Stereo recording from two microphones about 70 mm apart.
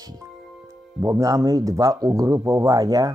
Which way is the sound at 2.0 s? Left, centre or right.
Right.